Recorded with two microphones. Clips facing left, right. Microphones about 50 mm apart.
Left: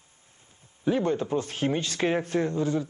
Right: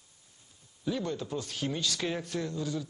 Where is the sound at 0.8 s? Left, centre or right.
Left.